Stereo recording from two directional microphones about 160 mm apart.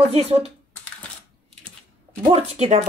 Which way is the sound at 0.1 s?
40° right (ahead or behind).